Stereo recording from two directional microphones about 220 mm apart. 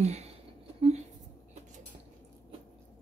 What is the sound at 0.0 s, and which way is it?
Speech, 30° right (ahead or behind).